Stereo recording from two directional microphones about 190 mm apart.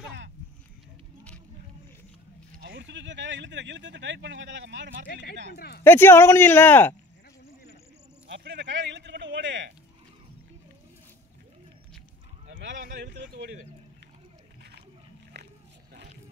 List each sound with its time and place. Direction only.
2.6 s speech: 65° right (ahead or behind)
5.0 s speech: 60° left (ahead or behind)
5.9 s speech: 10° left (ahead or behind)
8.3 s a sound: 65° right (ahead or behind)
12.4 s boat: 75° right (ahead or behind)
13.0 s speech: 65° right (ahead or behind)
15.3 s biting: 60° right (ahead or behind)